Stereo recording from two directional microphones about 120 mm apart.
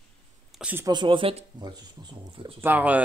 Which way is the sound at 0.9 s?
40° right (ahead or behind).